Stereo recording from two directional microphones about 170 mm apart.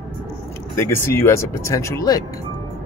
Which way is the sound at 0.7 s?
15° left (ahead or behind).